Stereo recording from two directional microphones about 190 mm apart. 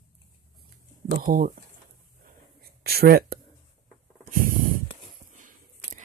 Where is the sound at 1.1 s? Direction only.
50° right (ahead or behind).